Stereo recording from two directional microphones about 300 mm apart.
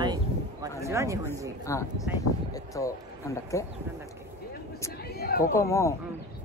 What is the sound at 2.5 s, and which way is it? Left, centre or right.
Speech, centre.